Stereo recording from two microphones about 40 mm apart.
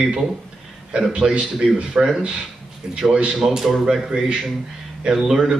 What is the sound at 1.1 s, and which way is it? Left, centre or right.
Speech, right.